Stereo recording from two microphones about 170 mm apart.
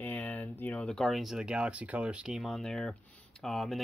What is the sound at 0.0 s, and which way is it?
Speech, 10° left (ahead or behind).